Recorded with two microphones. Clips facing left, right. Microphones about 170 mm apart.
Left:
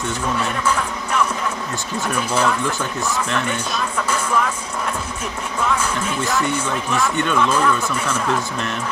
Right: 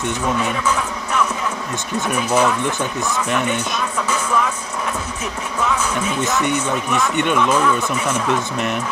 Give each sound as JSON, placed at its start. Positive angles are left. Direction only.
{"t": 2.1, "sound": "speech", "side_deg": -10}
{"t": 7.2, "sound": "speech", "side_deg": -15}